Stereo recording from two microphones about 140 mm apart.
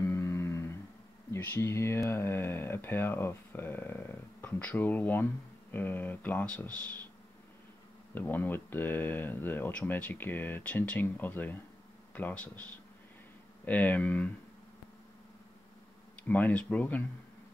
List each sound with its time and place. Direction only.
0.1 s guitar: 20° left (ahead or behind)
1.3 s speech: 15° left (ahead or behind)
8.1 s speech: 15° left (ahead or behind)
13.7 s speech: 10° left (ahead or behind)
16.3 s speech: 10° left (ahead or behind)